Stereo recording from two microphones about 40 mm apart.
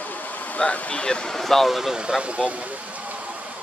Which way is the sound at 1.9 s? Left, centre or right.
Right.